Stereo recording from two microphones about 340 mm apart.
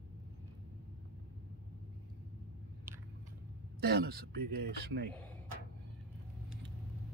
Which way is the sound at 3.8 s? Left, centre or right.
Right.